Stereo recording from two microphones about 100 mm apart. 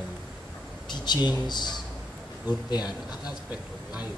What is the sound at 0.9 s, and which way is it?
A man's voice, 45° left (ahead or behind).